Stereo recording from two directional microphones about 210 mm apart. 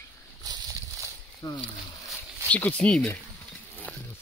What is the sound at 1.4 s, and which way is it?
Speech, 20° left (ahead or behind).